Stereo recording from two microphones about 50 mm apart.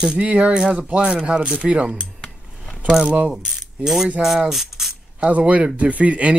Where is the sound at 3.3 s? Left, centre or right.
Centre.